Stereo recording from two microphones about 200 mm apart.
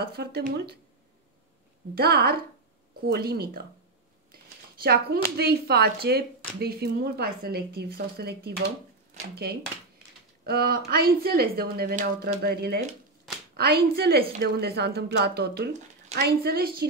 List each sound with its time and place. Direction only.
0.1 s speech: 50° right (ahead or behind)
2.0 s speech: 50° right (ahead or behind)
4.8 s speech: 50° right (ahead or behind)